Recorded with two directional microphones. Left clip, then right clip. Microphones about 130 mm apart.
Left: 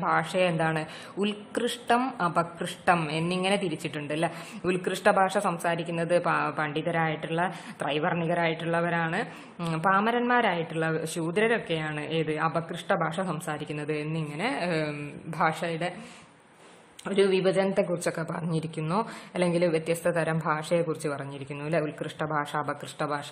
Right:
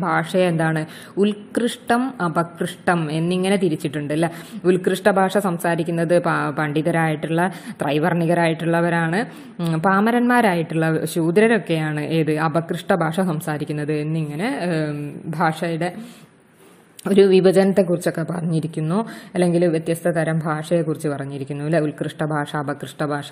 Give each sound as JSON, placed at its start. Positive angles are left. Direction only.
{"t": 0.0, "sound": "a woman's voice", "side_deg": -25}
{"t": 17.0, "sound": "a woman's voice", "side_deg": -40}